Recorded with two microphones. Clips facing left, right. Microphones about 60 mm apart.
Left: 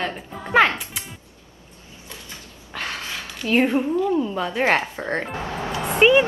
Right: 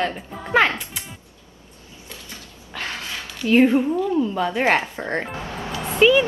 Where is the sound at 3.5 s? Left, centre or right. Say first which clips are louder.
Right 4 dB; left.